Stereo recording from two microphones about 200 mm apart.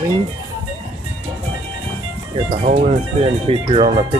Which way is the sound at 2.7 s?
35° right (ahead or behind).